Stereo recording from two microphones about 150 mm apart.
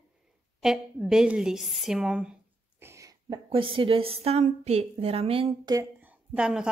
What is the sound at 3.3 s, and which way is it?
A woman's voice, 35° right (ahead or behind).